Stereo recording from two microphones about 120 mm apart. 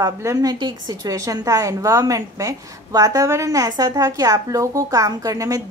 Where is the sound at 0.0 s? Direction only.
25° right (ahead or behind).